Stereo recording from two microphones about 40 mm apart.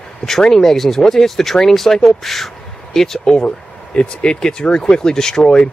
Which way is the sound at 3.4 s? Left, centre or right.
Left.